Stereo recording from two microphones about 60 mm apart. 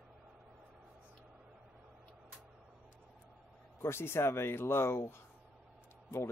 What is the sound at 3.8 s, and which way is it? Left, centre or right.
Speech, left.